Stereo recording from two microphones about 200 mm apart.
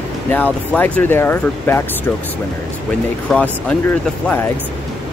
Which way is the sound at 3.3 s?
5° left (ahead or behind).